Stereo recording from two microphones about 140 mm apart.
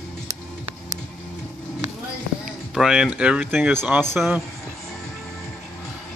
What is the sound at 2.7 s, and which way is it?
Speech, 5° right (ahead or behind).